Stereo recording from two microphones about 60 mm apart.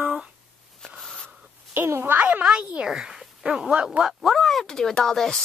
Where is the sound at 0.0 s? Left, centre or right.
Centre.